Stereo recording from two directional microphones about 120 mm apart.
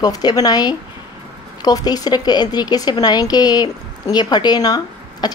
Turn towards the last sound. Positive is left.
turn(degrees=35)  # may be behind; listen again after turning